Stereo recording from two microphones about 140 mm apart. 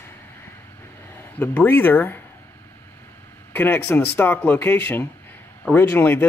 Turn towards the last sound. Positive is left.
turn(degrees=15)  # may be behind; listen again after turning